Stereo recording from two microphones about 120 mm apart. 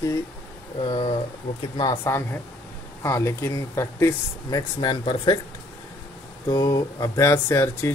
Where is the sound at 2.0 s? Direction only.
20° left (ahead or behind).